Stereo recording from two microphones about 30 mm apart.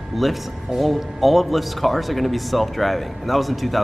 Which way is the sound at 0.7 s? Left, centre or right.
Centre.